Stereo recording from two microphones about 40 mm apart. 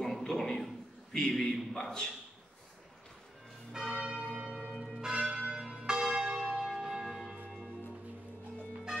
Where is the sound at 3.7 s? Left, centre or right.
Centre.